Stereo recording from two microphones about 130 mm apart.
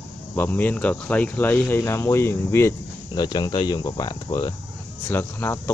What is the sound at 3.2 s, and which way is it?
Speech, 30° left (ahead or behind).